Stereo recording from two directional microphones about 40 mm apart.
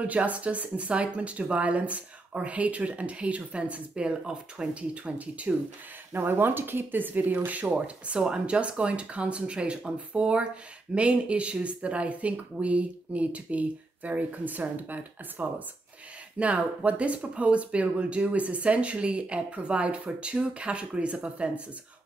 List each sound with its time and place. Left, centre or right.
0.0 s speech: right
6.1 s speech: right
7.8 s speech: right
14.4 s speech: right
16.3 s speech: right